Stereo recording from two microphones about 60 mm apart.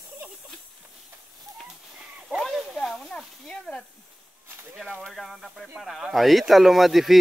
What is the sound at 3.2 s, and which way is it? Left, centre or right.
Sizzle, centre.